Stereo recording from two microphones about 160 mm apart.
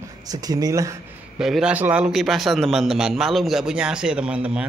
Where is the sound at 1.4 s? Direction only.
5° right (ahead or behind).